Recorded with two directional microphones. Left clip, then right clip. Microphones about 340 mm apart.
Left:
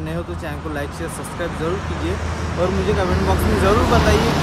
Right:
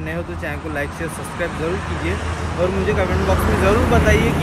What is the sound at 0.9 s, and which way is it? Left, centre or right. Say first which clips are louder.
Speech: right 2 dB; right.